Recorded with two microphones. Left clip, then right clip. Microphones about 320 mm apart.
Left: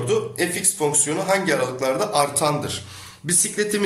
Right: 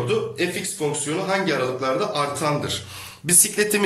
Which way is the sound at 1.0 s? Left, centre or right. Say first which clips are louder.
Left 1 dB; centre.